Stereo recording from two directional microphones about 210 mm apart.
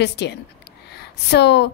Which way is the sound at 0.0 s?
55° left (ahead or behind).